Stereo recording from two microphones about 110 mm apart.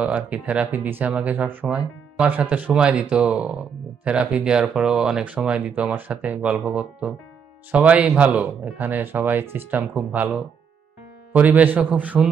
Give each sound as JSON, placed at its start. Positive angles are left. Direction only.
{"t": 0.0, "sound": "speech", "side_deg": -15}